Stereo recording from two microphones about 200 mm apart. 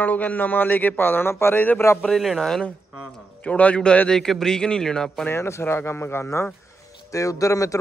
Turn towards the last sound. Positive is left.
turn(degrees=15)  # may be behind; listen again after turning